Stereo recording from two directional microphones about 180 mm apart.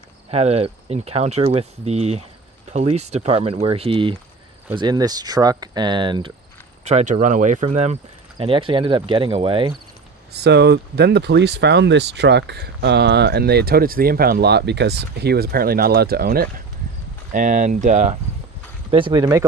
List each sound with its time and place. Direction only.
0.3 s speech: 35° right (ahead or behind)
6.8 s speech: 40° right (ahead or behind)
10.3 s speech: 65° right (ahead or behind)
17.3 s speech: 45° right (ahead or behind)
18.9 s speech: 30° right (ahead or behind)